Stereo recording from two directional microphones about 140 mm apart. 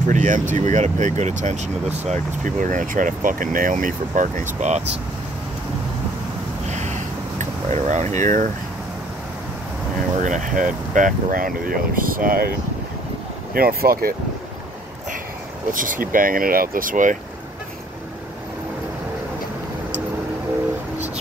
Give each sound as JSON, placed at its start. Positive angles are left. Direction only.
{"t": 0.0, "sound": "speech", "side_deg": -65}
{"t": 6.7, "sound": "a sound", "side_deg": -55}
{"t": 10.2, "sound": "speech", "side_deg": -65}
{"t": 15.7, "sound": "speech", "side_deg": -75}